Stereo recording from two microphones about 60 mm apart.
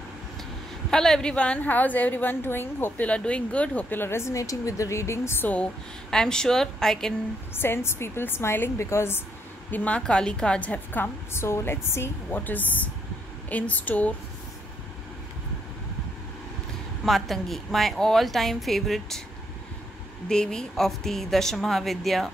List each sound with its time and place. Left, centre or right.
0.8 s a woman's voice: centre; by 2.9 s left
3.0 s a woman's voice: left
3.9 s a woman's voice: left
4.3 s a woman's voice: left
6.0 s a woman's voice: centre
7.5 s a woman's voice: left
9.7 s a woman's voice: left
10.9 s a woman's voice: left
11.4 s a woman's voice: left
12.4 s a woman's voice: left
17.0 s a woman's voice: centre
20.2 s a woman's voice: centre